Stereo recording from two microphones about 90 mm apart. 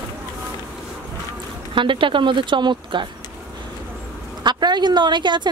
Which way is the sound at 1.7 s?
70° right (ahead or behind).